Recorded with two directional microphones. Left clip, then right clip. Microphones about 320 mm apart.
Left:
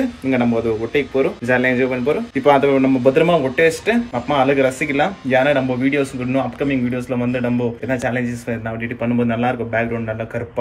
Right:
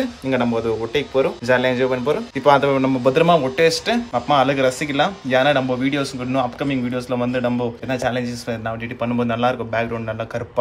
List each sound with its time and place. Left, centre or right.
0.3 s speech: centre